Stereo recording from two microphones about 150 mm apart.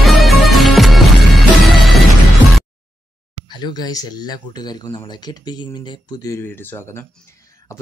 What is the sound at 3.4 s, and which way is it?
Speech, 30° left (ahead or behind).